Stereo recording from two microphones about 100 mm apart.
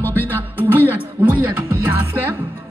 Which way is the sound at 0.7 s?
20° right (ahead or behind).